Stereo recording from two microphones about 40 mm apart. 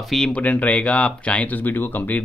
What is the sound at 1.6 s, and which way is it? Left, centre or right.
Speech, left.